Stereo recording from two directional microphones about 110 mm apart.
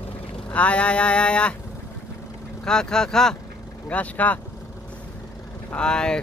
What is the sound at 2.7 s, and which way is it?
Speech, 5° left (ahead or behind).